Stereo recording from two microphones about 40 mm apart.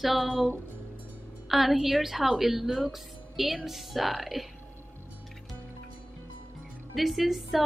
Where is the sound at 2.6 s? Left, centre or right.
Centre.